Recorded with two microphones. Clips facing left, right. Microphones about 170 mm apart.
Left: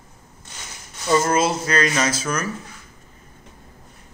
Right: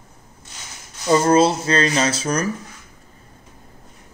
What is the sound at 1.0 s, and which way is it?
Speech, 30° right (ahead or behind).